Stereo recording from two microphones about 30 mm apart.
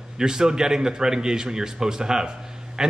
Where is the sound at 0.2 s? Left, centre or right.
Right.